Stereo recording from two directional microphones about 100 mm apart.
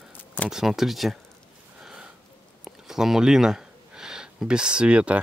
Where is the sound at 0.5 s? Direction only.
5° right (ahead or behind).